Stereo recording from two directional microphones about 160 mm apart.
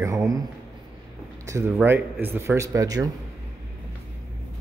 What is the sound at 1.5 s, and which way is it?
Speech, 15° right (ahead or behind).